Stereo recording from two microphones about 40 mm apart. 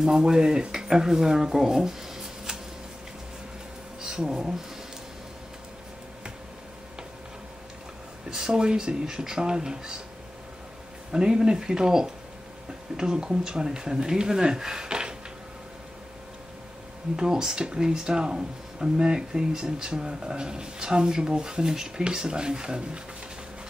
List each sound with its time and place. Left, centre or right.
0.0 s speech: centre
4.0 s speech: centre
8.3 s speech: centre
11.1 s speech: centre
17.2 s speech: centre